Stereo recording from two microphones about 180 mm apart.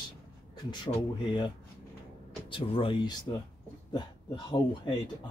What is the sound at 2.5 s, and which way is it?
Speech, 30° left (ahead or behind).